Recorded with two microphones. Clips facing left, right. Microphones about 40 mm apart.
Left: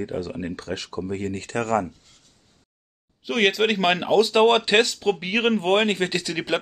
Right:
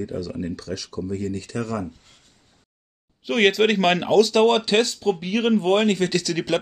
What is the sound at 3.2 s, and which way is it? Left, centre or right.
Speech, centre.